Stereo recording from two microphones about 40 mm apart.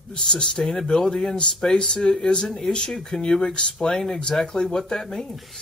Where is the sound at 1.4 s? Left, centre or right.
Left.